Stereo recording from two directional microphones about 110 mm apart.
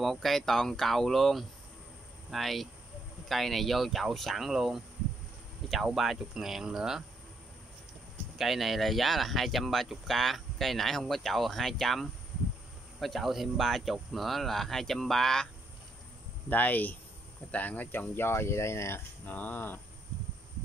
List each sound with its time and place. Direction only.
0.0 s speech: centre (ahead or behind)
8.4 s speech: centre (ahead or behind)
16.4 s speech: 15° left (ahead or behind)